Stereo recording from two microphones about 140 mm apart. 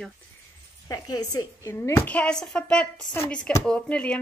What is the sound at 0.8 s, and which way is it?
Speech, 30° left (ahead or behind).